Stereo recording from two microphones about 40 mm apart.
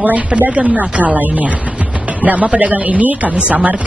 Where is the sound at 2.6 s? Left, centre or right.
Right.